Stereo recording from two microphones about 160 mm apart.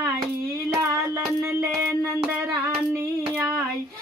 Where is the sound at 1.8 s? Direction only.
15° right (ahead or behind).